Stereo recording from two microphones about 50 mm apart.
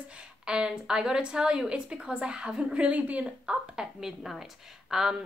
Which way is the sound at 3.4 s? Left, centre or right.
Centre.